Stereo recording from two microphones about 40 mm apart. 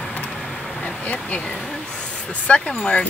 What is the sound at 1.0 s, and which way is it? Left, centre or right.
Speech, left.